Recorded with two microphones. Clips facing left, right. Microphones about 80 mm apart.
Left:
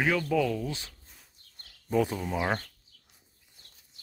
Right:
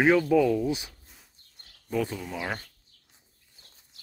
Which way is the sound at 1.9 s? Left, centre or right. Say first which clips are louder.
Left 2 dB; centre.